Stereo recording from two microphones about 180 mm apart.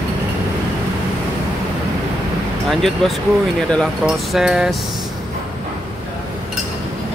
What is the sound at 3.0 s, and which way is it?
Speech, centre (ahead or behind).